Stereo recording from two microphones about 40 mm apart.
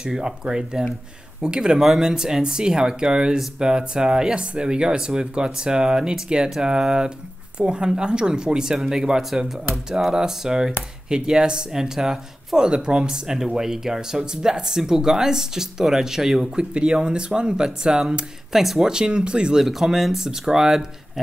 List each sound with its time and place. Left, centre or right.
0.0 s speech: centre
16.5 s speech: right
18.5 s speech: centre
18.8 s speech: centre
19.6 s speech: centre